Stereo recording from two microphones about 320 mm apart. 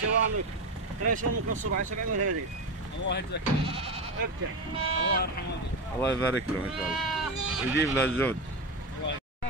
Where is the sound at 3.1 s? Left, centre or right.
Left.